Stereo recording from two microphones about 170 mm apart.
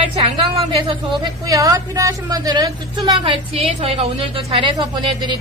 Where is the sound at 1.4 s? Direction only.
20° right (ahead or behind).